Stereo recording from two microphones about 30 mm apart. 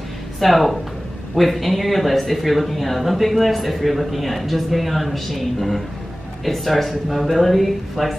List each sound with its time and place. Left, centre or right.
0.4 s speech: centre